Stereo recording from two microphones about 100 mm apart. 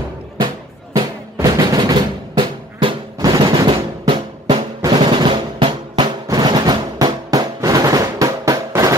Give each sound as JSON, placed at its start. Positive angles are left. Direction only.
{"t": 0.9, "sound": "music", "side_deg": -40}
{"t": 3.2, "sound": "drum", "side_deg": -45}
{"t": 6.2, "sound": "drum roll", "side_deg": -45}